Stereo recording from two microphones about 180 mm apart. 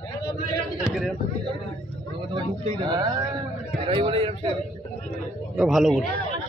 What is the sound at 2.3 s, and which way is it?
A man's voice, 25° right (ahead or behind).